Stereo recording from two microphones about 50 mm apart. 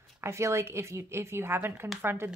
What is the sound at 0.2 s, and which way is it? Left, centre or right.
A woman's voice, right.